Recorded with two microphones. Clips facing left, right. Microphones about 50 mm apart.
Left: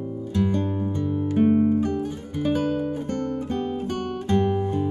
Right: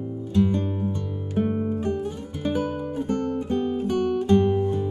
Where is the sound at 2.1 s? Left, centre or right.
Centre.